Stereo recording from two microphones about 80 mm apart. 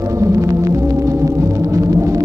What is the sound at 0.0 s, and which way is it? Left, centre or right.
Music, right.